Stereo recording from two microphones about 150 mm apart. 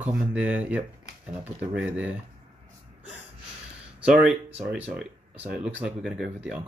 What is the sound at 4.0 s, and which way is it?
Speech, 5° right (ahead or behind).